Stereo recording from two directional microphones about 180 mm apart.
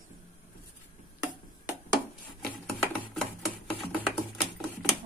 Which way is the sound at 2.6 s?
Centre (ahead or behind).